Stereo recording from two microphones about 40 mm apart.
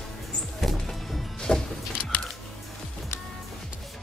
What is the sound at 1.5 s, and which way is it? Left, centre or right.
Vehicle, left.